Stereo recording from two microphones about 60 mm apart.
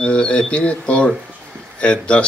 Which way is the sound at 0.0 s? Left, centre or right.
Centre.